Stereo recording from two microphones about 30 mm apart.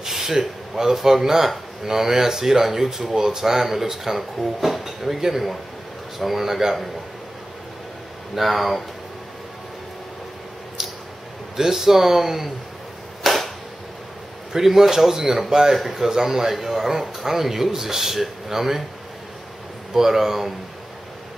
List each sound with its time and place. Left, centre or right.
0.0 s speech: centre
8.4 s speech: centre
11.5 s speech: centre
13.2 s a sound: centre
14.5 s speech: centre
15.7 s speech: centre
16.0 s speech: centre
19.9 s speech: centre